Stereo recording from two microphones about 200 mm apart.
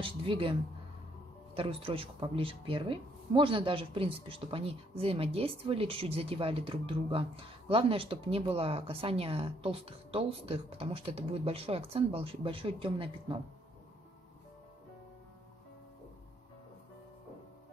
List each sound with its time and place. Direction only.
0.0 s speech: 25° right (ahead or behind)